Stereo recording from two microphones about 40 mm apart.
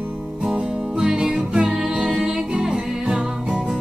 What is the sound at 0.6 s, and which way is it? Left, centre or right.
Music, centre.